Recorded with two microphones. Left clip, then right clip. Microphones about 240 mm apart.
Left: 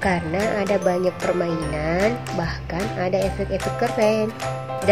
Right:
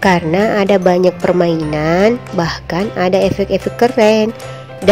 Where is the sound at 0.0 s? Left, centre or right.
Right.